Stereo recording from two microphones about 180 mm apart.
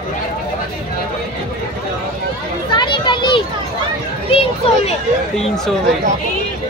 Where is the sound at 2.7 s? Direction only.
25° left (ahead or behind).